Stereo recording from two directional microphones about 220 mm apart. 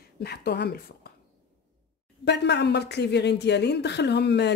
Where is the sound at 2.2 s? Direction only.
50° left (ahead or behind).